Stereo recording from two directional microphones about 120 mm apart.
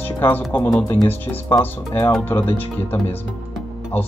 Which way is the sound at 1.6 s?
15° left (ahead or behind).